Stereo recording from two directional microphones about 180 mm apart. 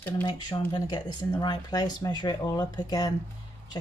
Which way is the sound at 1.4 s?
25° left (ahead or behind).